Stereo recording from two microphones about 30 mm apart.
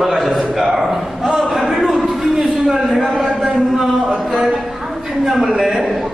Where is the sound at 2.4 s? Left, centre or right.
Right.